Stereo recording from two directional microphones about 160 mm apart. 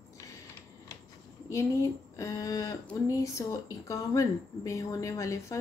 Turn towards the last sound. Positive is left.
turn(degrees=20)  # may be behind; listen again after turning